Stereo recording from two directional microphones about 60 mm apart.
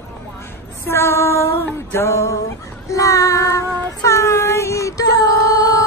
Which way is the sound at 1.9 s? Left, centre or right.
Left.